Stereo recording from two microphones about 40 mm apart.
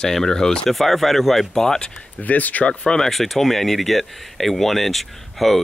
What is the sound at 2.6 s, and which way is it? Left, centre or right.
Speech, left.